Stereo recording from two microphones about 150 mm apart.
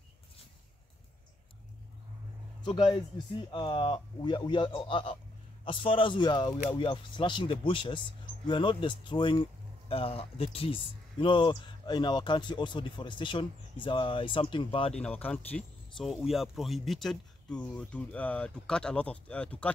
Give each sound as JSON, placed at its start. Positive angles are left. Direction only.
{"t": 2.6, "sound": "speech", "side_deg": 30}
{"t": 15.0, "sound": "speech", "side_deg": 10}